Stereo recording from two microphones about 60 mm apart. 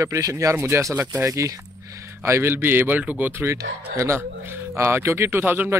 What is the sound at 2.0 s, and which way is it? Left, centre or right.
Mantra, right.